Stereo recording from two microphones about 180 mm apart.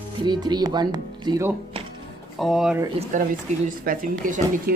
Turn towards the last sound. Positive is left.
turn(degrees=-50)  # may be behind; listen again after turning